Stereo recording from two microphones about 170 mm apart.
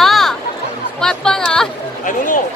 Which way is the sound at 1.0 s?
5° left (ahead or behind).